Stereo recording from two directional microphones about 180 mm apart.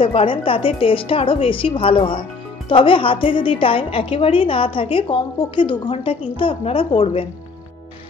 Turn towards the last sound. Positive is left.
turn(degrees=30)  # may be behind; listen again after turning